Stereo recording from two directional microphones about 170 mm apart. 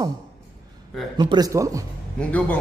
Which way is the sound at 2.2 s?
10° left (ahead or behind).